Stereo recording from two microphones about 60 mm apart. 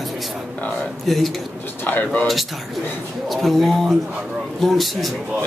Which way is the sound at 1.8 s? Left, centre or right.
Left.